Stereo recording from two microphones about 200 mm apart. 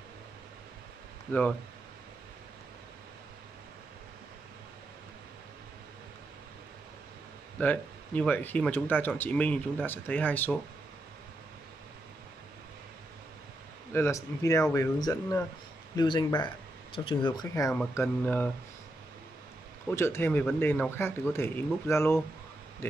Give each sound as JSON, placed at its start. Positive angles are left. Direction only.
{"t": 1.3, "sound": "speech", "side_deg": 10}
{"t": 7.5, "sound": "speech", "side_deg": 5}
{"t": 13.9, "sound": "speech", "side_deg": 15}
{"t": 17.7, "sound": "speech", "side_deg": 5}
{"t": 19.9, "sound": "speech", "side_deg": 10}